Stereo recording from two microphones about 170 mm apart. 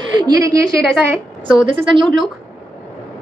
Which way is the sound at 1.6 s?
30° right (ahead or behind).